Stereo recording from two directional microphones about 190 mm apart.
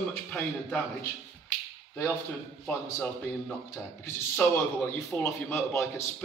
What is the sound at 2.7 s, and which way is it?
A man's voice, 15° left (ahead or behind).